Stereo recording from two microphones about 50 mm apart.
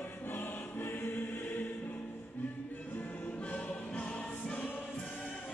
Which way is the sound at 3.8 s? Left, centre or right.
Left.